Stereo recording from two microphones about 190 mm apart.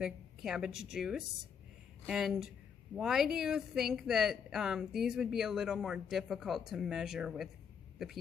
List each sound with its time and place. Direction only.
0.0 s a woman's voice: centre (ahead or behind)